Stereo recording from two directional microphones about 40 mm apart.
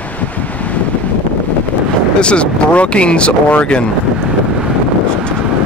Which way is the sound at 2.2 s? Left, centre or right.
Left.